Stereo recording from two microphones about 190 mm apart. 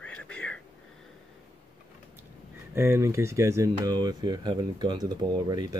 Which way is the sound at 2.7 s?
15° right (ahead or behind).